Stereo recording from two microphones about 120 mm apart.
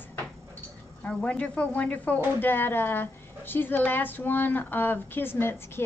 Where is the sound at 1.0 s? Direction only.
10° left (ahead or behind).